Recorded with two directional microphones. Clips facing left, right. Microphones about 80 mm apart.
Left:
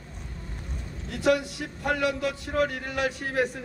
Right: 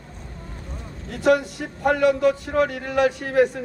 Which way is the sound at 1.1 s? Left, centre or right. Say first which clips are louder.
Right 5 dB; right.